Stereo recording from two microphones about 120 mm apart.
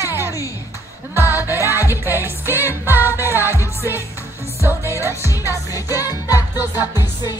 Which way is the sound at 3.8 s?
20° right (ahead or behind).